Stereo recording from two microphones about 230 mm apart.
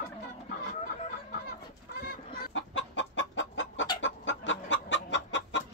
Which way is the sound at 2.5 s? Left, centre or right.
Left.